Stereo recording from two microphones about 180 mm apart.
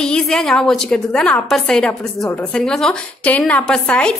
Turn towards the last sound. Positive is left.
turn(degrees=5)  # may be behind; listen again after turning